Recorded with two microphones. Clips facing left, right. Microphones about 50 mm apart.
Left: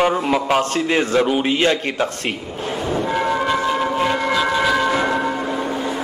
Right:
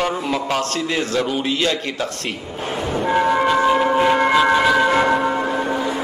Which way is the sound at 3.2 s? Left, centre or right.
Centre.